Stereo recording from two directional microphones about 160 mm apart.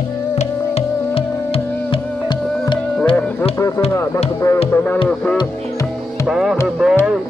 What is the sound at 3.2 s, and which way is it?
Music, 10° left (ahead or behind).